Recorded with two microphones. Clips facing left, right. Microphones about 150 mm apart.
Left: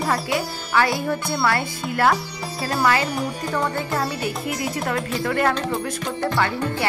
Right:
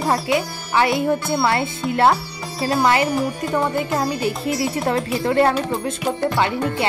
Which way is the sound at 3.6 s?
15° right (ahead or behind).